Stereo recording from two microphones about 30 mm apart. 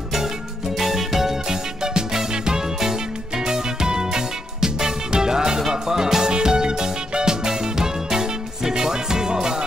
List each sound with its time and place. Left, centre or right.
0.7 s music: centre
1.5 s music: right